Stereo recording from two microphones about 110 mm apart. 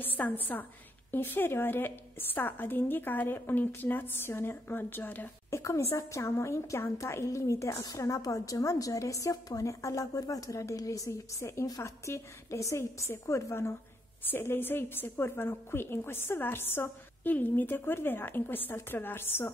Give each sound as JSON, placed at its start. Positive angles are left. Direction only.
{"t": 0.0, "sound": "a woman's voice", "side_deg": 15}
{"t": 5.6, "sound": "a woman's voice", "side_deg": 30}